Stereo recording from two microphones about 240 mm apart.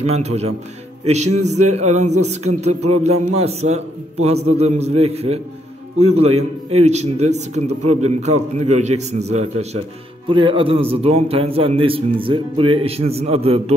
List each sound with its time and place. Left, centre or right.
0.0 s a man's voice: right